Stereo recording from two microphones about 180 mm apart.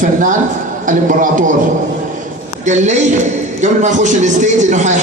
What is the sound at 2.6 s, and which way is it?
A man's voice, 40° right (ahead or behind).